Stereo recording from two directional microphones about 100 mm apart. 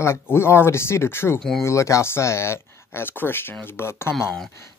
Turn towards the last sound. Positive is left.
turn(degrees=25)  # may be behind; listen again after turning